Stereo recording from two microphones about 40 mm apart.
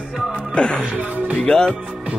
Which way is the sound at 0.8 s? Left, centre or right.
Right.